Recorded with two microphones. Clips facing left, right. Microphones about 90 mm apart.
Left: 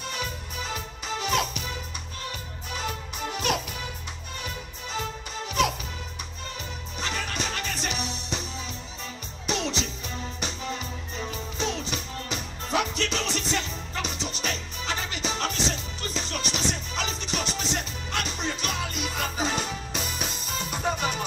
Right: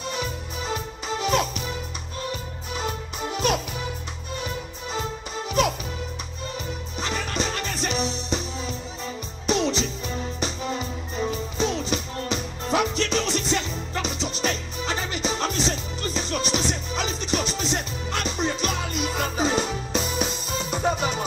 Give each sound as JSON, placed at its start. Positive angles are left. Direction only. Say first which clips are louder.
{"t": 0.1, "sound": "music", "louder": "right 4 dB", "side_deg": -20}
{"t": 2.8, "sound": "music", "louder": "right 3 dB", "side_deg": -20}
{"t": 7.0, "sound": "music", "louder": "right 3 dB", "side_deg": -15}
{"t": 9.5, "sound": "music", "louder": "right 6 dB", "side_deg": -15}
{"t": 11.6, "sound": "music", "louder": "right 5 dB", "side_deg": -15}